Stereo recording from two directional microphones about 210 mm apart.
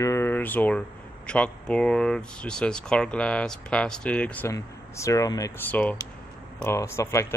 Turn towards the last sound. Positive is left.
turn(degrees=15)  # may be behind; listen again after turning